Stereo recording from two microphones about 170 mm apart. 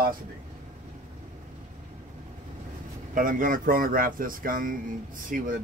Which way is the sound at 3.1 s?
50° right (ahead or behind).